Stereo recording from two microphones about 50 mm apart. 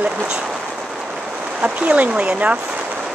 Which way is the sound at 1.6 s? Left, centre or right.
Right.